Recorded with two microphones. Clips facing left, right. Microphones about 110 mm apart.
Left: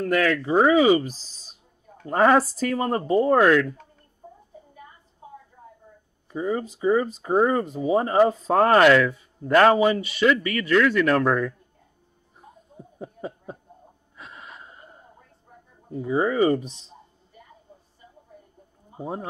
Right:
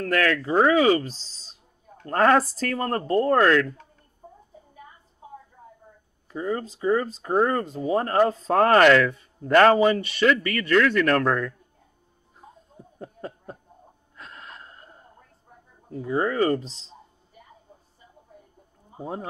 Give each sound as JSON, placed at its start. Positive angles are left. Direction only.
{"t": 0.0, "sound": "speech", "side_deg": 10}
{"t": 6.3, "sound": "speech", "side_deg": 10}
{"t": 12.7, "sound": "a sound", "side_deg": 10}
{"t": 14.1, "sound": "gasp", "side_deg": 5}
{"t": 15.9, "sound": "speech", "side_deg": 5}
{"t": 16.6, "sound": "a man's voice", "side_deg": -30}
{"t": 18.9, "sound": "a sound", "side_deg": 0}